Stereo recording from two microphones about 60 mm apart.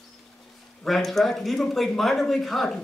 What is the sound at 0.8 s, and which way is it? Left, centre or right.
Speech, centre.